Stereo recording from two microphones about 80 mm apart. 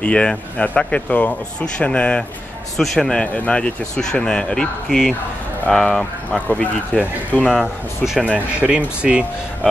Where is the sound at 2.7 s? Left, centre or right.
Centre.